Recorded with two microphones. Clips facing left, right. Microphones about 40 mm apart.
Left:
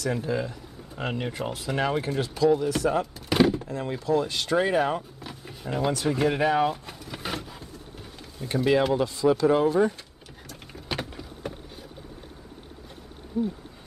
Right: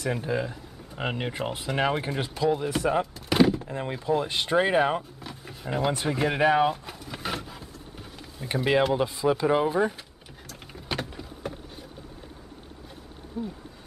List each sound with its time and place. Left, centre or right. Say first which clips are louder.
0.1 s speech: even; centre
3.2 s a sound: right 1 dB; centre
3.6 s speech: even; right
5.2 s vehicle: even; centre
5.9 s speech: left 2 dB; centre
6.7 s vehicle: right 1 dB; centre
8.5 s speech: left 1 dB; centre
10.4 s vehicle: even; centre
13.4 s a sound: left 6 dB; centre